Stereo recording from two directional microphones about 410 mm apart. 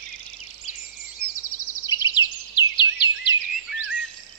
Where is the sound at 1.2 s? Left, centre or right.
Left.